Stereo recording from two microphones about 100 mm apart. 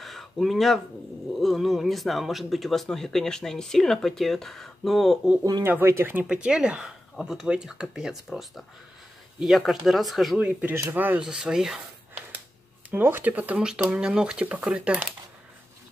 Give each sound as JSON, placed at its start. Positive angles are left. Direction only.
{"t": 0.0, "sound": "a sound", "side_deg": 0}
{"t": 1.4, "sound": "speech", "side_deg": 0}
{"t": 5.6, "sound": "speech", "side_deg": -25}
{"t": 6.2, "sound": "speech", "side_deg": -10}
{"t": 10.4, "sound": "speech", "side_deg": -20}
{"t": 12.9, "sound": "speech", "side_deg": -20}